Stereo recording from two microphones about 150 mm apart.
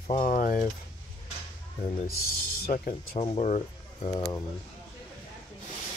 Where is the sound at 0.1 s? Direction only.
60° left (ahead or behind).